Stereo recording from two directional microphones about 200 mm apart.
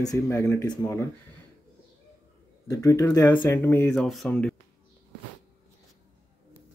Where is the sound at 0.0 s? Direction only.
15° left (ahead or behind).